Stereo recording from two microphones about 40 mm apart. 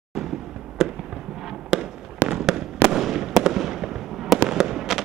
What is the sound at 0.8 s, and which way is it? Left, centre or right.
Fireworks, centre.